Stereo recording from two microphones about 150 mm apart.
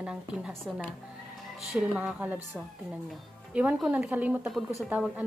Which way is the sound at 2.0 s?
10° right (ahead or behind).